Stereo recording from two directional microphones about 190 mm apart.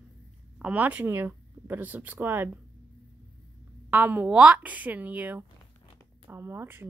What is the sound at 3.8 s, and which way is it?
Speech, 10° right (ahead or behind).